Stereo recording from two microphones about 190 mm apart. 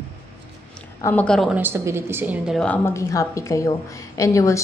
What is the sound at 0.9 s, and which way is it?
Speech, 10° left (ahead or behind).